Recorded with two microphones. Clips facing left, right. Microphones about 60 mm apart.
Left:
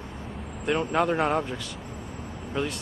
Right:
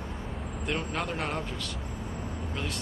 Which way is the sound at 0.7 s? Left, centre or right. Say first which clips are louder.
Left 10 dB; left.